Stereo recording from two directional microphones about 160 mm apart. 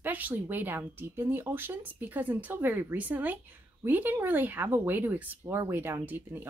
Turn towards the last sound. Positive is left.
turn(degrees=-10)  # may be behind; listen again after turning